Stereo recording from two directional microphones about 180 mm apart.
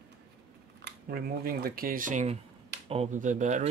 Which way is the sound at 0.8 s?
55° right (ahead or behind).